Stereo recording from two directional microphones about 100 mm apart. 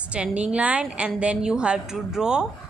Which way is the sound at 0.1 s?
10° right (ahead or behind).